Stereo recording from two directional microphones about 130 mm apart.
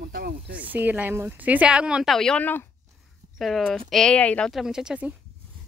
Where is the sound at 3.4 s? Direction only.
Centre (ahead or behind).